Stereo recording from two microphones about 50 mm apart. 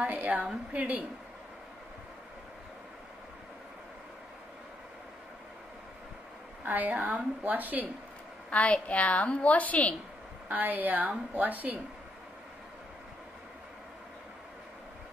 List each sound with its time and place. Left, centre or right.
0.1 s a woman's voice: right
6.6 s a woman's voice: right
8.5 s a woman's voice: left
10.5 s a woman's voice: right